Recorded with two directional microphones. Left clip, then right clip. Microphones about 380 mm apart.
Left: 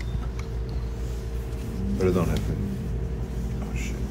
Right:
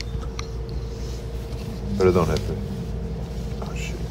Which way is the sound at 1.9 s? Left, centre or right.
Centre.